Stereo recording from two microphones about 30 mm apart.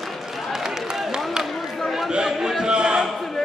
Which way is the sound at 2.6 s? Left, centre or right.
Right.